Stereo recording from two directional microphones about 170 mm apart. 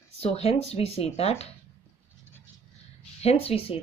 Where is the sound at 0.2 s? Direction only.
35° left (ahead or behind).